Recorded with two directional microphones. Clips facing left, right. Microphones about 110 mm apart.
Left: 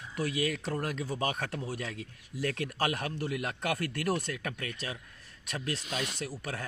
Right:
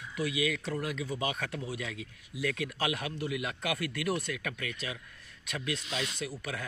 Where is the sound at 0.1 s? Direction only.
40° left (ahead or behind).